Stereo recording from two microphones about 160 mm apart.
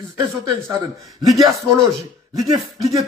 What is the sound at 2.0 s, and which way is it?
Speech, 25° right (ahead or behind).